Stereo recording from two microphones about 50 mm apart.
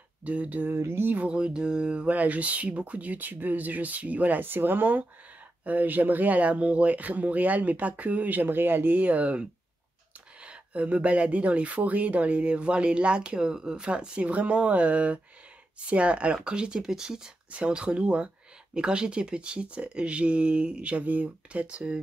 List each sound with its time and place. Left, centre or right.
0.2 s speech: right
0.7 s speech: right
1.1 s speech: right
2.0 s speech: right
8.9 s speech: right; by 17.3 s centre
17.5 s speech: right